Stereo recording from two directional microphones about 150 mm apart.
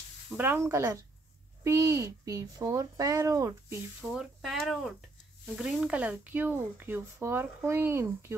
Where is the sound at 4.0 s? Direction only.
Centre (ahead or behind).